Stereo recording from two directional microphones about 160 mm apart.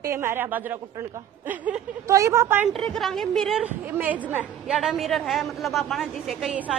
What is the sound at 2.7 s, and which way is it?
A woman's voice, centre (ahead or behind).